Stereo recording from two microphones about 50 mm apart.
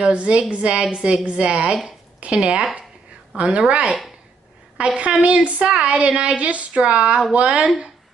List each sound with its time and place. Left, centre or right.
0.0 s a woman's voice: right